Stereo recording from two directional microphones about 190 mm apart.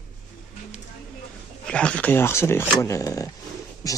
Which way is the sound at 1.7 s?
5° left (ahead or behind).